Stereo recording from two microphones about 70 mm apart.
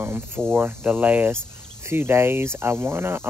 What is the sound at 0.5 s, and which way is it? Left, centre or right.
Cricket, right.